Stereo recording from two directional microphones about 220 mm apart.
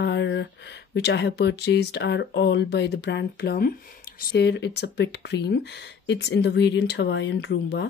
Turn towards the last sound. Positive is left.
turn(degrees=50)  # may be behind; listen again after turning